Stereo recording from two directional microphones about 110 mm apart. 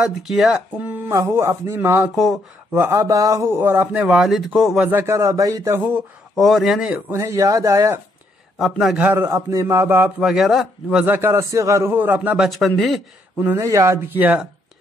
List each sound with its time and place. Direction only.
0.0 s a man's voice: 5° right (ahead or behind)
0.8 s a man's voice: 25° right (ahead or behind)
4.0 s a man's voice: 5° right (ahead or behind)
4.8 s a man's voice: 20° right (ahead or behind)
6.3 s a man's voice: centre (ahead or behind)
6.9 s a man's voice: 20° right (ahead or behind)
8.5 s a man's voice: centre (ahead or behind)
9.0 s a man's voice: 20° right (ahead or behind)
10.2 s a man's voice: 5° right (ahead or behind)
11.1 s a man's voice: 20° right (ahead or behind)
12.4 s a man's voice: centre (ahead or behind)
13.4 s a man's voice: 25° right (ahead or behind)